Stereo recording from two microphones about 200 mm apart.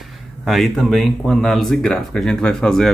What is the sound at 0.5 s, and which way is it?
Speech, centre (ahead or behind).